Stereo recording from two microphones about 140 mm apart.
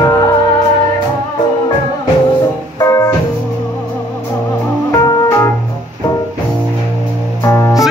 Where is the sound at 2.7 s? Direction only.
20° left (ahead or behind).